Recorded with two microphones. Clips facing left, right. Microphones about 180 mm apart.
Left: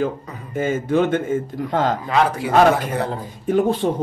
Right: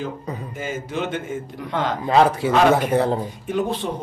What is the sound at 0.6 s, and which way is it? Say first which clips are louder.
A man's voice: left 10 dB; 55° left (ahead or behind).